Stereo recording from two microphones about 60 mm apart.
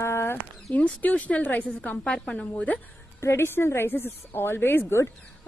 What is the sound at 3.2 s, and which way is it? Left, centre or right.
A woman's voice, left.